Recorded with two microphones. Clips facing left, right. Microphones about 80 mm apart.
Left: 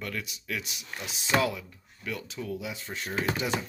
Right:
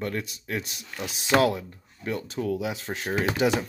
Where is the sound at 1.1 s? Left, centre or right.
Right.